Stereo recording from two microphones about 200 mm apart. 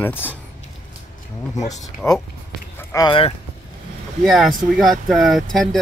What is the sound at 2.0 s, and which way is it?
Speech, 15° left (ahead or behind).